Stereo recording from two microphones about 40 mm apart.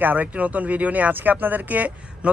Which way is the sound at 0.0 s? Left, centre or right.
Right.